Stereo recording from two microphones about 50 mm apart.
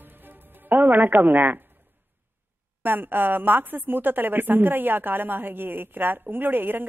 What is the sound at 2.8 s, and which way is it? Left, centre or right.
A woman's voice, right.